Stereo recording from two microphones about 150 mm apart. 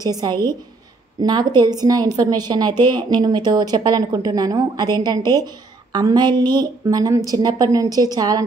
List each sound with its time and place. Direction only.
0.0 s speech: 25° right (ahead or behind)